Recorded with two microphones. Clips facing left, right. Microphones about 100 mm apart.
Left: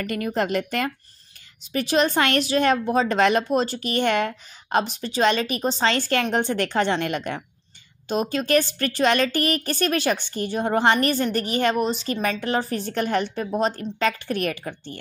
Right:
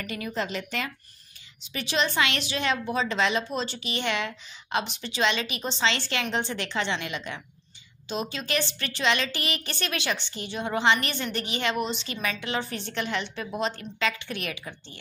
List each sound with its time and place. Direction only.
0.0 s a woman's voice: 50° left (ahead or behind)